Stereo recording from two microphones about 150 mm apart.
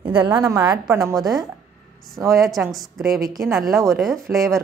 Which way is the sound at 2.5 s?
Centre (ahead or behind).